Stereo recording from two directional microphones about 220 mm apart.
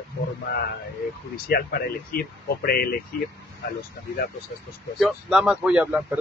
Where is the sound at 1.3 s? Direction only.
45° left (ahead or behind).